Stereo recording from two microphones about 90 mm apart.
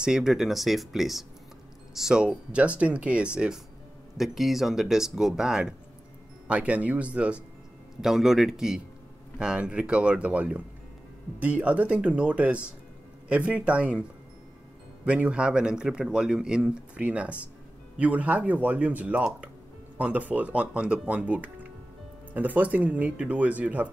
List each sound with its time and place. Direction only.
0.0 s speech: 5° right (ahead or behind)
8.0 s speech: 5° right (ahead or behind)
15.0 s speech: 15° right (ahead or behind)